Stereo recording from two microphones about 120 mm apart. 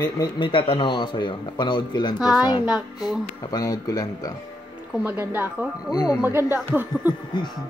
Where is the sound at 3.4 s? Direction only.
35° left (ahead or behind).